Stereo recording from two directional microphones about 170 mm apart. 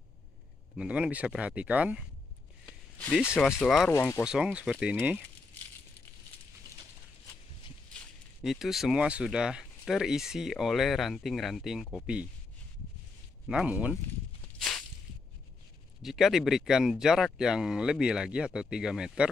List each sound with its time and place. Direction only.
0.7 s speech: 5° right (ahead or behind)
3.6 s speech: centre (ahead or behind)
3.9 s speech: 15° left (ahead or behind)
4.2 s speech: 5° right (ahead or behind)
7.9 s speech: centre (ahead or behind)
13.5 s speech: 5° right (ahead or behind)
14.6 s a sound: 5° left (ahead or behind)
16.0 s speech: centre (ahead or behind)